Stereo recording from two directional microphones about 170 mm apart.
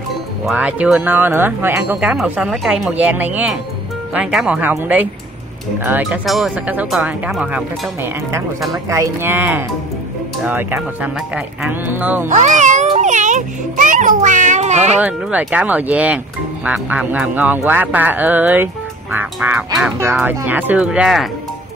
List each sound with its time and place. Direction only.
0.5 s speech: 10° right (ahead or behind)
12.3 s music: 45° right (ahead or behind)
15.0 s speech: 10° right (ahead or behind)